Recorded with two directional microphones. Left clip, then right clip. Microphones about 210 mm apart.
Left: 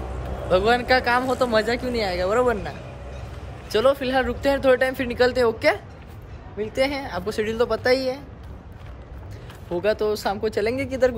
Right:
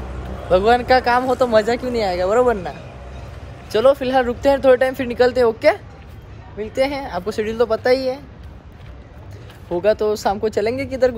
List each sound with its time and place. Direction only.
0.5 s speech: centre (ahead or behind)
3.7 s a woman's voice: centre (ahead or behind)
9.7 s speech: 5° left (ahead or behind)